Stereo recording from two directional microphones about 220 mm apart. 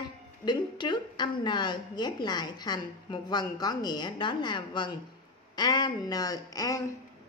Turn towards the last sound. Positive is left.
turn(degrees=15)  # may be behind; listen again after turning